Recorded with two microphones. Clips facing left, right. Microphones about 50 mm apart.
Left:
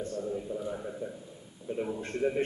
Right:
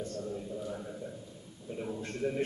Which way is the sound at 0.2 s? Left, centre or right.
Centre.